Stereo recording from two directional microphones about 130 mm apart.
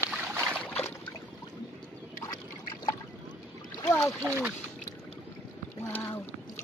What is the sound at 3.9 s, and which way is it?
Splash, 20° left (ahead or behind).